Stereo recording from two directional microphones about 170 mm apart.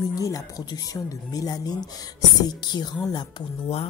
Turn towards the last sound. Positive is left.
turn(degrees=30)  # may be behind; listen again after turning